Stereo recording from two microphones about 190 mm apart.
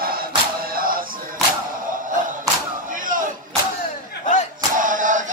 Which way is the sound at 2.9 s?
45° right (ahead or behind).